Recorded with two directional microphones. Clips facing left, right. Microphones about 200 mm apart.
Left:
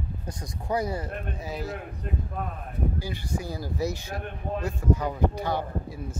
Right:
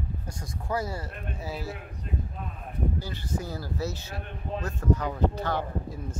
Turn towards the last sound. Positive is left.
turn(degrees=10)  # may be behind; listen again after turning